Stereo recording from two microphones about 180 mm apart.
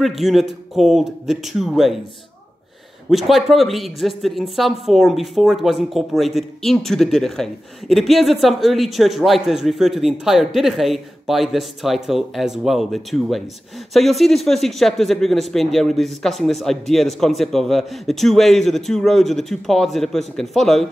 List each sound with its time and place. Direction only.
0.0 s speech: centre (ahead or behind)
3.1 s speech: centre (ahead or behind)